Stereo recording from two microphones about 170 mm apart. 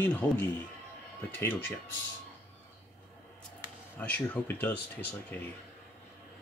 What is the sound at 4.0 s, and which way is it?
Speech, 10° left (ahead or behind).